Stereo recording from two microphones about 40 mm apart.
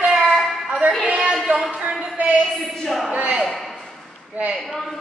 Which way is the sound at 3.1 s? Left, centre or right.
Right.